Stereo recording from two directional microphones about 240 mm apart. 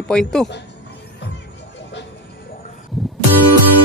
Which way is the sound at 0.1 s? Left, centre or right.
Centre.